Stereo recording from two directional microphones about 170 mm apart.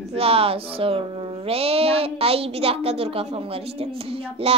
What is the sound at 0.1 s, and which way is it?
Speech, 35° right (ahead or behind).